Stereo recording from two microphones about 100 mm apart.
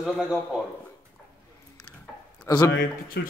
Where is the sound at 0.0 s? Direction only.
5° right (ahead or behind).